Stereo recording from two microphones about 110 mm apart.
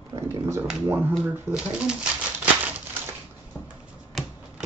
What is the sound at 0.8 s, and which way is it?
Speech, 20° right (ahead or behind).